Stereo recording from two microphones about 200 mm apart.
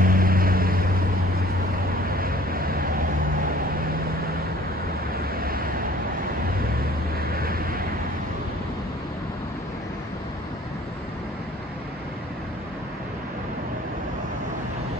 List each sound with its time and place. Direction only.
0.0 s vehicle: 45° right (ahead or behind)
5.1 s vehicle: 45° right (ahead or behind)
7.2 s vehicle: 50° right (ahead or behind)